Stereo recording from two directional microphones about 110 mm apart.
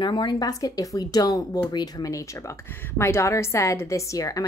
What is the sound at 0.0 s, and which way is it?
A woman's voice, 40° left (ahead or behind).